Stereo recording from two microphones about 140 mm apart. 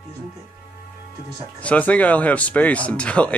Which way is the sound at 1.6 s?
10° left (ahead or behind).